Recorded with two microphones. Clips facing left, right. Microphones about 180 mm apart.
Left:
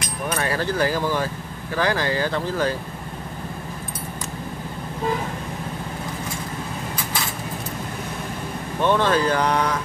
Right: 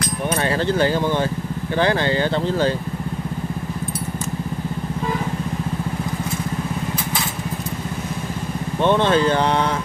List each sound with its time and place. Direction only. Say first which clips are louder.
0.3 s speech: right 3 dB; 25° right (ahead or behind)
8.8 s speech: right 3 dB; 25° right (ahead or behind)